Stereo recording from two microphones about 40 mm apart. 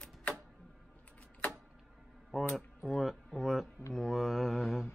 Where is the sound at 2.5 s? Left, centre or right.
Centre.